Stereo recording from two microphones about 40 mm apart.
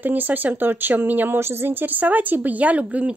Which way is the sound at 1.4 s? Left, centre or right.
Right.